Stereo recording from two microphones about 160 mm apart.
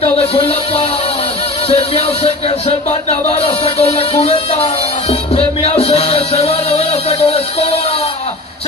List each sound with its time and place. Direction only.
0.0 s music: 40° left (ahead or behind)
1.7 s speech: 40° left (ahead or behind)